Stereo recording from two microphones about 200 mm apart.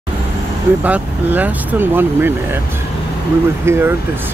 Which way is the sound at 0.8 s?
10° right (ahead or behind).